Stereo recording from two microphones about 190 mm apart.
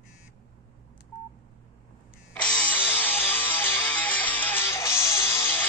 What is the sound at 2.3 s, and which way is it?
Music, 5° left (ahead or behind).